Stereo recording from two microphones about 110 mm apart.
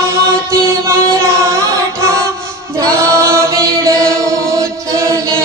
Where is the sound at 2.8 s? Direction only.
25° right (ahead or behind).